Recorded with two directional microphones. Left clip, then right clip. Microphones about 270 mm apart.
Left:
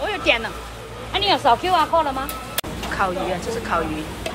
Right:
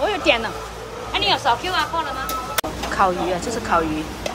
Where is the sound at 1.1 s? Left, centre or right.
Left.